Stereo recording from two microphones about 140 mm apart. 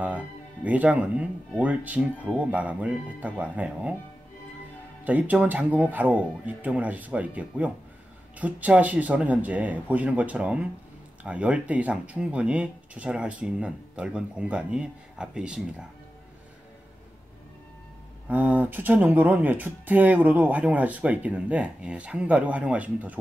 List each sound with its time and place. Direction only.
0.7 s speech: 10° right (ahead or behind)
5.0 s speech: 10° right (ahead or behind)
18.3 s speech: 10° right (ahead or behind)